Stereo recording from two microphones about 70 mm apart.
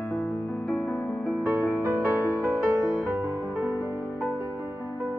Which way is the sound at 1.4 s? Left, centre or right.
Right.